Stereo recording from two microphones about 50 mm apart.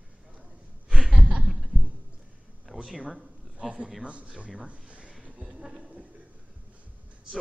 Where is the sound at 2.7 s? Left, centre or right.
Right.